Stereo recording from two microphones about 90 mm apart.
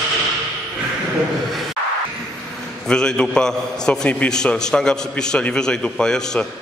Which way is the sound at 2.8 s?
5° left (ahead or behind).